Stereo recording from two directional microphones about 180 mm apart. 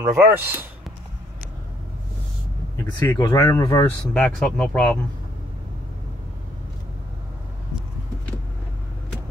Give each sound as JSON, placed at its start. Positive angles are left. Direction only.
{"t": 0.0, "sound": "speech", "side_deg": -15}
{"t": 2.8, "sound": "speech", "side_deg": 15}
{"t": 4.1, "sound": "speech", "side_deg": 5}